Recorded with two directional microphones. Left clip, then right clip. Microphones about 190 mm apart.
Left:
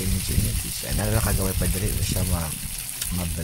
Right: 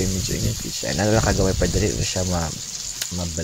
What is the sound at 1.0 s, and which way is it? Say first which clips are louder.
Speech: right 8 dB; 20° right (ahead or behind).